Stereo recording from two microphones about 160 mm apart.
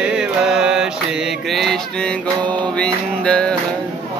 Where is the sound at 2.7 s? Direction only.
5° left (ahead or behind).